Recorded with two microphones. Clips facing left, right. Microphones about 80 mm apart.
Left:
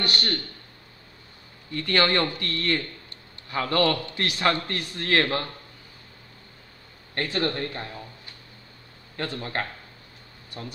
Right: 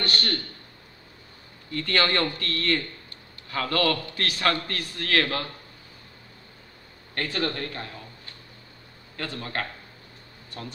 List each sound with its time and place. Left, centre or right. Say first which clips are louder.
0.0 s a man's voice: even; centre
1.7 s a man's voice: left 2 dB; centre
7.2 s a man's voice: left 2 dB; left
9.1 s a man's voice: left 2 dB; left